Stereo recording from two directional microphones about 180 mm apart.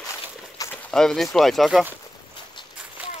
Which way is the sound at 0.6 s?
20° left (ahead or behind).